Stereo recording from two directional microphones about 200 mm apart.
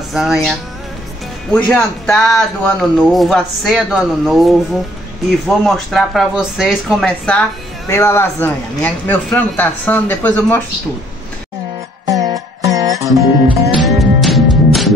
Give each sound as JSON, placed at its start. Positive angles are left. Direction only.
{"t": 0.1, "sound": "speech", "side_deg": 0}
{"t": 5.7, "sound": "speech", "side_deg": 0}
{"t": 7.9, "sound": "speech", "side_deg": 15}
{"t": 12.1, "sound": "music", "side_deg": -15}
{"t": 13.0, "sound": "guitar", "side_deg": -15}
{"t": 13.7, "sound": "music", "side_deg": 0}